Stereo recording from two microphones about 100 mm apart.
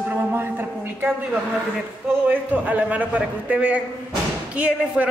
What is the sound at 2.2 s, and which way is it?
A man's voice, 15° right (ahead or behind).